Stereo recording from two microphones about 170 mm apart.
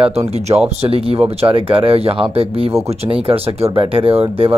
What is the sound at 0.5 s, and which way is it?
Speech, 35° right (ahead or behind).